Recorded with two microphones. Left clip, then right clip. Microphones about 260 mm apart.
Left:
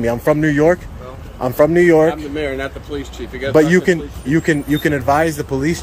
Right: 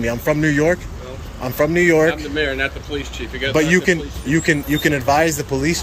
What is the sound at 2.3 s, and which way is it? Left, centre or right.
Speech, left.